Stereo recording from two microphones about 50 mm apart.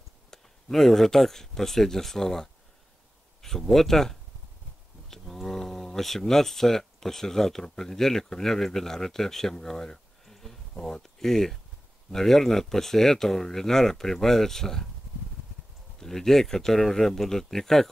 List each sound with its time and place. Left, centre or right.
0.3 s speech: centre
16.0 s speech: centre